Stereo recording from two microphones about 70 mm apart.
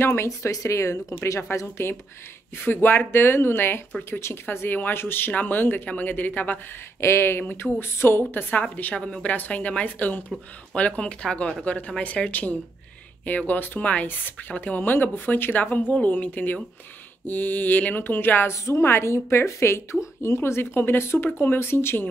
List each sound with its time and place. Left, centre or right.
0.0 s a woman's voice: left
2.5 s a woman's voice: left
7.1 s a woman's voice: left
18.5 s a woman's voice: left